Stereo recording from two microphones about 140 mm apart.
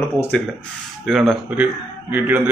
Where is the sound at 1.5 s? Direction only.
10° right (ahead or behind).